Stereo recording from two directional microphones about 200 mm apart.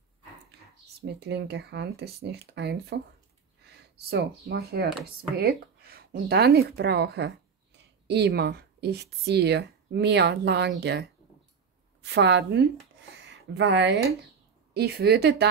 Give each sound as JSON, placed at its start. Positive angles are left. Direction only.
{"t": 1.0, "sound": "speech", "side_deg": -60}